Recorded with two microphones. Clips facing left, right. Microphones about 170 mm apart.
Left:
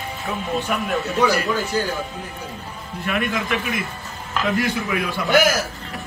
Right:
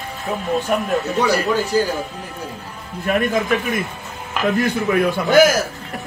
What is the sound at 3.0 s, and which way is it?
Speech, 45° right (ahead or behind).